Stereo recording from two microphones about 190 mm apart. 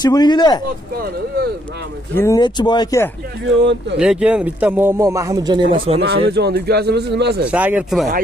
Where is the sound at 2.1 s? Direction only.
15° left (ahead or behind).